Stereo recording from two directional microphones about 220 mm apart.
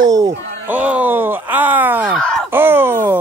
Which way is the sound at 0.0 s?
15° right (ahead or behind).